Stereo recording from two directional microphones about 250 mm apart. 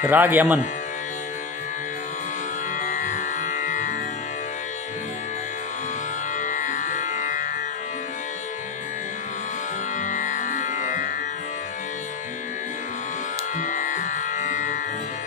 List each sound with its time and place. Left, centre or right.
0.0 s speech: centre
2.8 s music: left
6.4 s music: left
10.0 s music: left
13.6 s music: left